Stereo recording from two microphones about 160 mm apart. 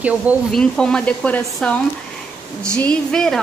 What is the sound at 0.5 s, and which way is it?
Speech, 5° left (ahead or behind).